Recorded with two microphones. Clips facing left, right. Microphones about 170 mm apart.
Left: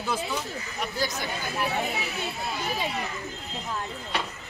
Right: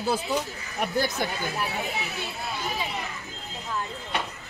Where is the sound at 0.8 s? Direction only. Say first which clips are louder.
Right 5 dB; 55° right (ahead or behind).